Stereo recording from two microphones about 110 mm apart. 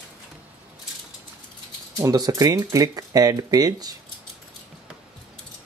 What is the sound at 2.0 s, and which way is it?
Speech, 30° right (ahead or behind).